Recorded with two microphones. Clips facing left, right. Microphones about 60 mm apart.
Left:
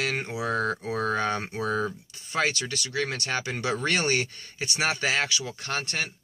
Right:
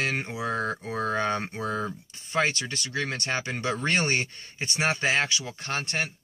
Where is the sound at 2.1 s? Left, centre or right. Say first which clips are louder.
Right 5 dB; right.